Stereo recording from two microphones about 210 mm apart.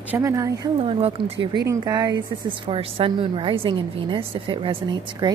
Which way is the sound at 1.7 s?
20° right (ahead or behind).